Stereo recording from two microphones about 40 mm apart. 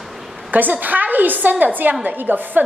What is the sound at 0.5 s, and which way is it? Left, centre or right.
A woman's voice, right.